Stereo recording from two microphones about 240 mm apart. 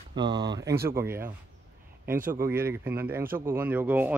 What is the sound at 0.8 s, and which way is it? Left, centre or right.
Speech, centre.